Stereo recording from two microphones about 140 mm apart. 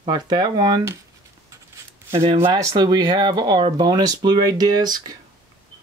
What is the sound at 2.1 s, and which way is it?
Speech, 45° right (ahead or behind).